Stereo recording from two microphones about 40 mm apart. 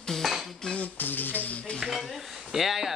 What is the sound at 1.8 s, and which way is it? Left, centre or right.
Cutlery, centre.